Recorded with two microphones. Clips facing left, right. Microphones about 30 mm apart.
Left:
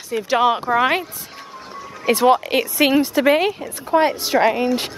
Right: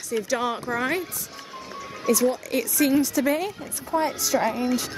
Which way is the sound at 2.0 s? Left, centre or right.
Left.